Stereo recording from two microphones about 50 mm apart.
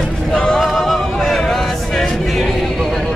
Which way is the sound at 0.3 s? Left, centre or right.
Centre.